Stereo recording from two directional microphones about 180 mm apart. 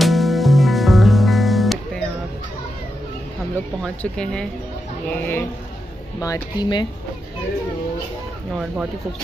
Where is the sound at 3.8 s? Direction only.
5° left (ahead or behind).